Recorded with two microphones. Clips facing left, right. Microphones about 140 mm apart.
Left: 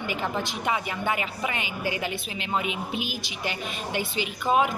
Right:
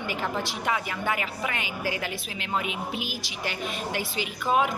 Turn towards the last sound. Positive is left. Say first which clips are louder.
# left 1 dB
turn(degrees=20)  # may be behind; listen again after turning